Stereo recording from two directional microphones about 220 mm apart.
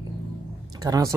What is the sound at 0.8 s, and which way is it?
Speech, 15° right (ahead or behind).